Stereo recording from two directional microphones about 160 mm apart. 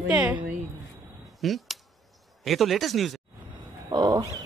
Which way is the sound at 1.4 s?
Centre (ahead or behind).